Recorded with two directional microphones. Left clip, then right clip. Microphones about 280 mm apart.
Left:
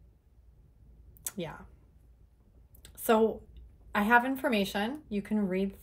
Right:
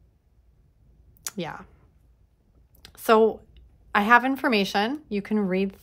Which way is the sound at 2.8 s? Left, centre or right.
Right.